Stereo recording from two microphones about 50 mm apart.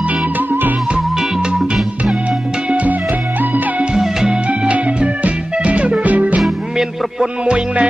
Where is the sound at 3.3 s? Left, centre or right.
Right.